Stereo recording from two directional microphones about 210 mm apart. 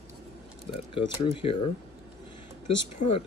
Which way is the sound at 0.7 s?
25° left (ahead or behind).